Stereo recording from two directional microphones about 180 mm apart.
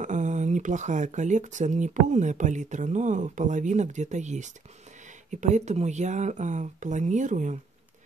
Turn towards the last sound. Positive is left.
turn(degrees=-45)  # may be behind; listen again after turning